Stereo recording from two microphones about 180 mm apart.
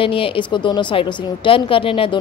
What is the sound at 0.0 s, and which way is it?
A woman's voice, 30° left (ahead or behind).